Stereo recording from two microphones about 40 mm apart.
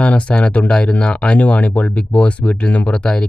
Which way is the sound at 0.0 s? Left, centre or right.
Left.